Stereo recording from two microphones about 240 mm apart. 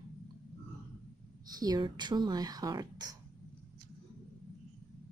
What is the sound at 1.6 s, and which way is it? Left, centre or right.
Speech, centre.